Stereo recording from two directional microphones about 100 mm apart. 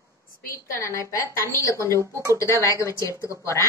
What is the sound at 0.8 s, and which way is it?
A woman's voice, 30° left (ahead or behind).